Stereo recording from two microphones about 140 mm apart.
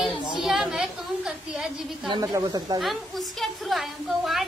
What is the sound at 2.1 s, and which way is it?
Speech, 30° right (ahead or behind).